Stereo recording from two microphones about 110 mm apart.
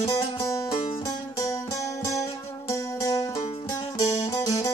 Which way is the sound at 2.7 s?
30° left (ahead or behind).